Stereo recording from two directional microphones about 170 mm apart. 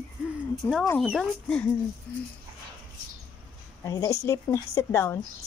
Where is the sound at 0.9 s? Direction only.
Centre (ahead or behind).